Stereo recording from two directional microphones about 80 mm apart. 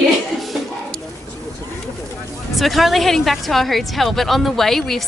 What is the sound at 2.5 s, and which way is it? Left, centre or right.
Speech, centre.